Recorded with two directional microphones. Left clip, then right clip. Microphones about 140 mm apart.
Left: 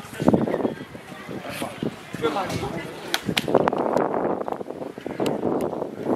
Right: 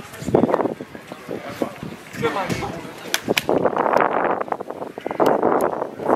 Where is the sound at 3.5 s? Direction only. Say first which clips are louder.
Left 1 dB; 40° right (ahead or behind).